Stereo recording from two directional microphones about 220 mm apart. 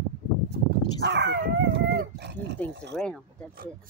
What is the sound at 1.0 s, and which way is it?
Dog, 50° right (ahead or behind).